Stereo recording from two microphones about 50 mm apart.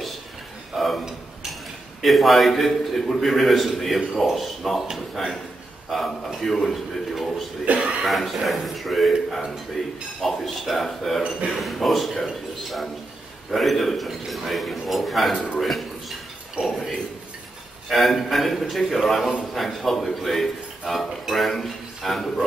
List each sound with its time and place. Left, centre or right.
0.7 s a man's voice: centre
7.6 s speech: right
8.0 s a man's voice: centre
13.5 s a man's voice: centre
15.3 s a man's voice: left
15.6 s a sound: centre
17.8 s a man's voice: centre